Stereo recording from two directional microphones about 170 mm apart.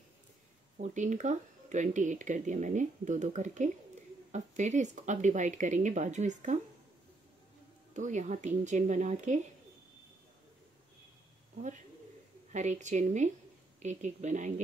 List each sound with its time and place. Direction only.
0.7 s speech: 45° right (ahead or behind)
7.9 s speech: 45° right (ahead or behind)
12.5 s speech: 45° right (ahead or behind)